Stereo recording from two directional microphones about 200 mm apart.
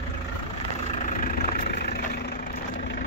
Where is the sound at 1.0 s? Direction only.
40° left (ahead or behind).